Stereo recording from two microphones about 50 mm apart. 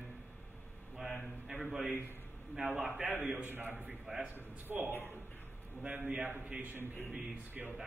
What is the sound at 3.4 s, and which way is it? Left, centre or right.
A man's voice, right.